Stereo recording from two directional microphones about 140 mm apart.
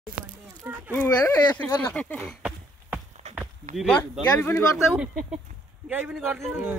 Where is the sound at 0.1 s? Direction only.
90° right.